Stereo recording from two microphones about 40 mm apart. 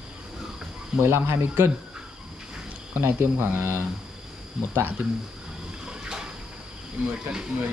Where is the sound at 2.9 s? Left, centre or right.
Right.